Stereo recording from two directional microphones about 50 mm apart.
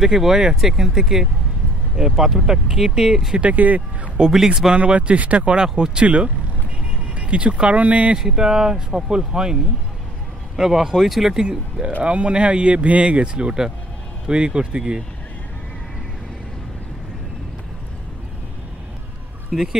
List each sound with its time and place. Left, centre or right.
0.0 s speech: centre
3.3 s speech: right
4.2 s speech: centre
4.7 s speech: right
8.2 s speech: centre
12.0 s speech: right
19.5 s speech: centre